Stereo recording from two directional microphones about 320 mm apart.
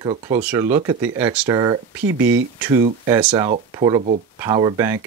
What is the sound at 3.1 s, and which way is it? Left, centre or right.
Speech, centre.